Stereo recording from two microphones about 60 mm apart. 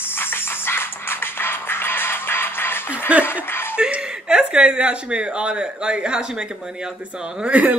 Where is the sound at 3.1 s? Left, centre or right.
Right.